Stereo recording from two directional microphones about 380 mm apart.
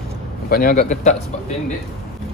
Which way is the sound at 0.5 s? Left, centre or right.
Left.